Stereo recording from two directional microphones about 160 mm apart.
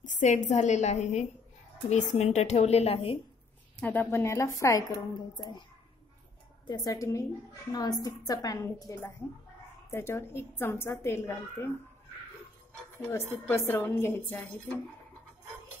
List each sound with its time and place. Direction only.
0.0 s speech: 50° left (ahead or behind)
3.8 s a woman's voice: 10° left (ahead or behind); by 5.6 s 25° left (ahead or behind)
6.7 s a woman's voice: 25° left (ahead or behind)
13.5 s a woman's voice: 15° left (ahead or behind)